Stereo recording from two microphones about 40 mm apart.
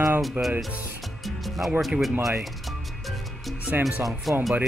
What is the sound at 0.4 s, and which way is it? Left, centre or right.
Speech, right.